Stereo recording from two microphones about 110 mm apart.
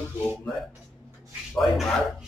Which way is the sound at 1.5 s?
5° left (ahead or behind).